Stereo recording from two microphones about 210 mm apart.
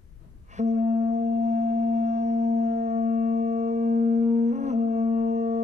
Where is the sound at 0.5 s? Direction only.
35° right (ahead or behind).